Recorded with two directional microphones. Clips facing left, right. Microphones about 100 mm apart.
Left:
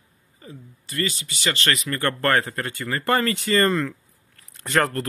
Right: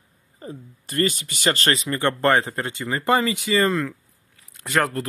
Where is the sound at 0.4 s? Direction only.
40° right (ahead or behind).